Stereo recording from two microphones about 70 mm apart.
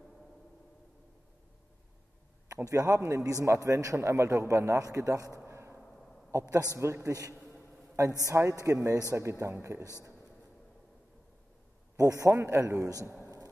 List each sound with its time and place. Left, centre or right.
2.5 s a man's voice: right
4.8 s a man's voice: right
5.5 s a sound: right
6.3 s a man's voice: right
9.1 s a man's voice: right
12.0 s a man's voice: right